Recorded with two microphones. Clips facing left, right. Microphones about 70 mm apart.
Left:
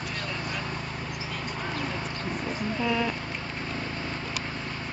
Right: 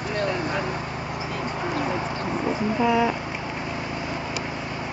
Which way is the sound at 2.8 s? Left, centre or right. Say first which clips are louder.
Right 7 dB; centre.